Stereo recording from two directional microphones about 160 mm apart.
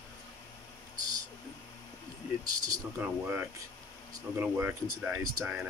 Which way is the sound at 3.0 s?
10° right (ahead or behind).